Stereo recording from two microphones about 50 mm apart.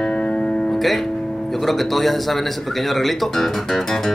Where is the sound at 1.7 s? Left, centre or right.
Centre.